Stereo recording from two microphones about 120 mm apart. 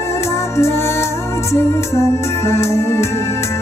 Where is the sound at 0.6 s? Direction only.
20° left (ahead or behind).